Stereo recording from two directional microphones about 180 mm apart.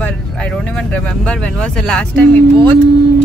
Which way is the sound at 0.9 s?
5° left (ahead or behind).